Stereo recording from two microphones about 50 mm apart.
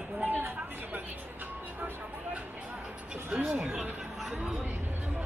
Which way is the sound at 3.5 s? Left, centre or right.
Right.